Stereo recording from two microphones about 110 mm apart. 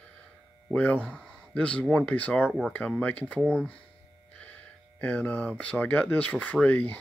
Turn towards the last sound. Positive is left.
turn(degrees=15)  # may be behind; listen again after turning